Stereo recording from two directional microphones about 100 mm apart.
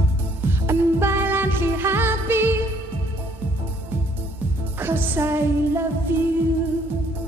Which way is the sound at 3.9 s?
20° right (ahead or behind).